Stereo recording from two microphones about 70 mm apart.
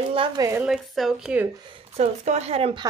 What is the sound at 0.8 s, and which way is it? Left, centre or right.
Speech, centre.